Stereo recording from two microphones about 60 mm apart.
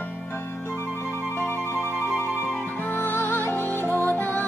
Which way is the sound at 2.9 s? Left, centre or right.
Left.